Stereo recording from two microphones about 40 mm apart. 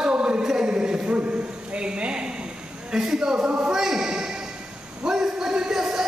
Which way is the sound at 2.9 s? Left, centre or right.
Centre.